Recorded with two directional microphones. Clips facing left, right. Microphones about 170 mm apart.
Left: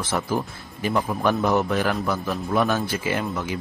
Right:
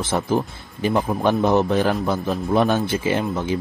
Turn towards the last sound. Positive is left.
turn(degrees=-25)  # may be behind; listen again after turning